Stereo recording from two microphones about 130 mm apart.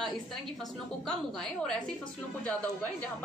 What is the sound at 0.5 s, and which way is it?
A woman's voice, 5° left (ahead or behind).